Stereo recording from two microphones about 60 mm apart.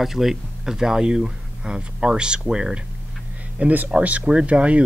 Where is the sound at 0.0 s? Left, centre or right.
Centre.